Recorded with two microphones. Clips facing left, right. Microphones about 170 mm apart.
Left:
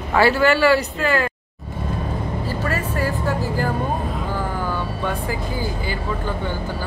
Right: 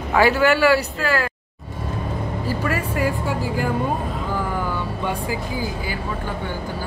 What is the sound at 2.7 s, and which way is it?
Speech, 15° right (ahead or behind).